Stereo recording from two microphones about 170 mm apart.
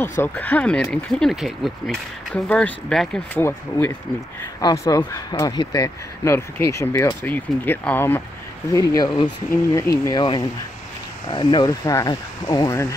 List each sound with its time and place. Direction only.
0.2 s speech: 10° left (ahead or behind)
8.7 s speech: 20° left (ahead or behind)